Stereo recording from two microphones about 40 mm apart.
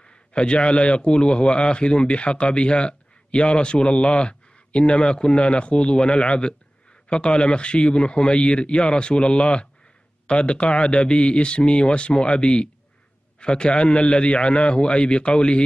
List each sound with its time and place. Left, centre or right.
0.0 s a man's voice: left